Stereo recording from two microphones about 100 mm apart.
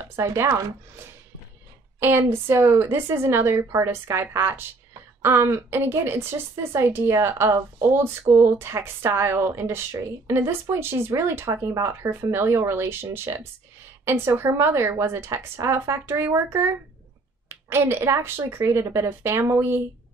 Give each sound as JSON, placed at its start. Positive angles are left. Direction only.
{"t": 0.1, "sound": "a woman's voice", "side_deg": -25}
{"t": 2.0, "sound": "a woman's voice", "side_deg": -25}